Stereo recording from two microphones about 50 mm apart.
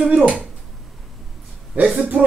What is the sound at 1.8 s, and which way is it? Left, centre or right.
Speech, right.